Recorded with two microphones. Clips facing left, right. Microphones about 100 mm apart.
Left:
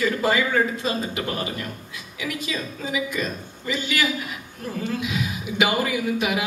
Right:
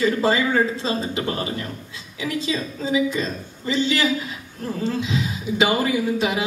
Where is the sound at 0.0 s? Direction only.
25° right (ahead or behind).